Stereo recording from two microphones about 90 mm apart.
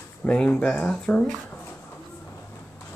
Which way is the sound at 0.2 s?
10° left (ahead or behind).